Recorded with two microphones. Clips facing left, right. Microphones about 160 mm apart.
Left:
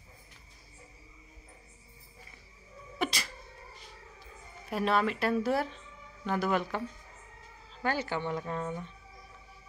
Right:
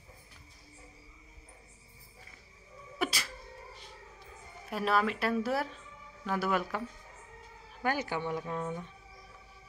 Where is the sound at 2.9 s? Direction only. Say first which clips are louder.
Left 1 dB; centre (ahead or behind).